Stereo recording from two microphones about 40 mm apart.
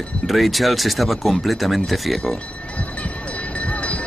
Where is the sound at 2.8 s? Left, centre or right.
Left.